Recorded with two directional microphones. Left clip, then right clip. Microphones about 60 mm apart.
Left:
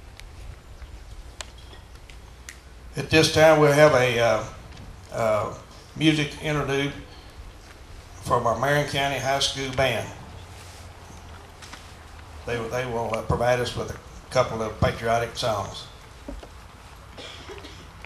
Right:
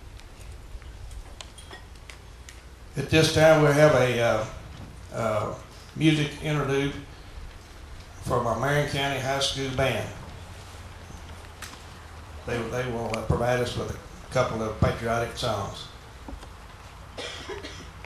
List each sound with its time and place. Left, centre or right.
2.9 s a man's voice: left
8.2 s a man's voice: left
12.4 s a man's voice: left
17.1 s cough: right